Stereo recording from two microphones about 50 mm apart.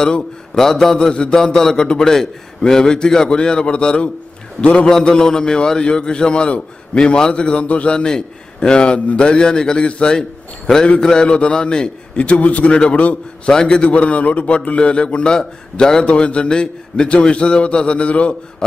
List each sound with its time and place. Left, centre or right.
0.6 s a man's voice: centre; by 4.8 s left
4.8 s a man's voice: centre